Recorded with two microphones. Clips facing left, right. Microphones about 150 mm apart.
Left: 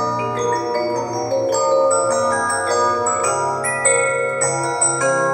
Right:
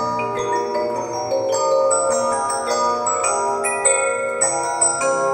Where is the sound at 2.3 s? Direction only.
10° right (ahead or behind).